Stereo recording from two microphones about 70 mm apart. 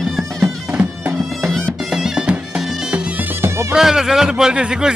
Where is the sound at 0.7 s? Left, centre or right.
Centre.